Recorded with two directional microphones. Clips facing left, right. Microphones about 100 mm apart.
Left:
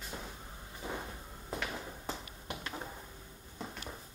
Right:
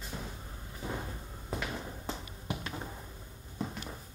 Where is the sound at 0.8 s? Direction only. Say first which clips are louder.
Right 2 dB; 5° right (ahead or behind).